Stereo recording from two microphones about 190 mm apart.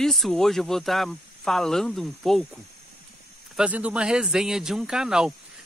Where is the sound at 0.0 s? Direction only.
Centre (ahead or behind).